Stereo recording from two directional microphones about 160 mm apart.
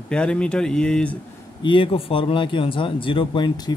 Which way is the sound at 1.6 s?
35° left (ahead or behind).